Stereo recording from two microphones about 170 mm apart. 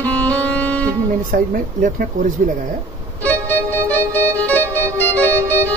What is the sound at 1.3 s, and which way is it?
Speech, 55° right (ahead or behind).